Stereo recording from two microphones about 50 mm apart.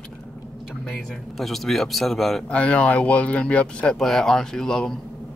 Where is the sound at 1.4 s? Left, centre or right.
Centre.